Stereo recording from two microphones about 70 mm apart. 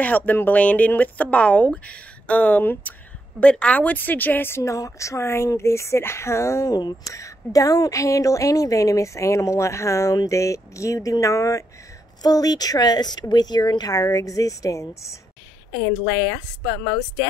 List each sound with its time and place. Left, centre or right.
0.0 s speech: left
3.3 s speech: centre; by 4.7 s left
4.7 s a woman's voice: left
6.7 s speech: left
7.1 s a woman's voice: left
12.2 s speech: left